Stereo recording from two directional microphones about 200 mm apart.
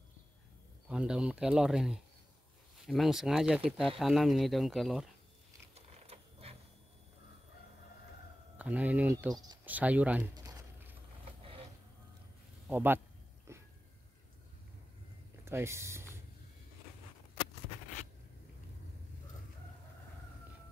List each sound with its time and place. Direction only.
0.8 s speech: 5° right (ahead or behind)
5.8 s a sound: 30° right (ahead or behind)
8.5 s speech: 5° right (ahead or behind)
9.7 s speech: 10° right (ahead or behind)
10.3 s a sound: 20° right (ahead or behind)
12.6 s a man's voice: 10° right (ahead or behind)
13.5 s dog: 15° right (ahead or behind)
15.4 s speech: 10° right (ahead or behind)